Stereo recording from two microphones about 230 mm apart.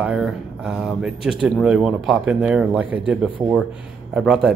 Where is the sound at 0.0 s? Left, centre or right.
Centre.